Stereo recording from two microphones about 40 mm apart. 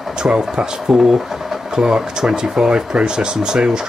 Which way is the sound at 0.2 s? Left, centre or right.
Right.